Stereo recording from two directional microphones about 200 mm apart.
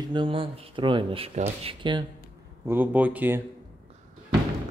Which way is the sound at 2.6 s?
10° right (ahead or behind).